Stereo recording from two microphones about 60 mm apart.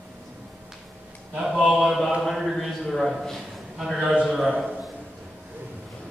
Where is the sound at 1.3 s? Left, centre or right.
Centre.